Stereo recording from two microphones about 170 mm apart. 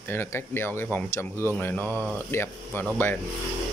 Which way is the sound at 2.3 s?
15° left (ahead or behind).